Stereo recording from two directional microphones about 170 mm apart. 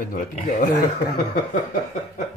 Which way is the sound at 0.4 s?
40° left (ahead or behind).